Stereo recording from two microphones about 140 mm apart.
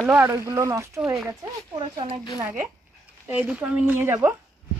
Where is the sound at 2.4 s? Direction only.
15° right (ahead or behind).